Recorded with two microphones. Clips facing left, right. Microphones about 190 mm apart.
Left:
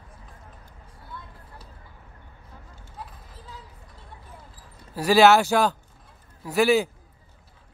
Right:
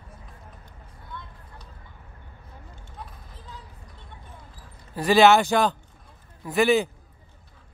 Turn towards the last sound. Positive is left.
turn(degrees=5)  # may be behind; listen again after turning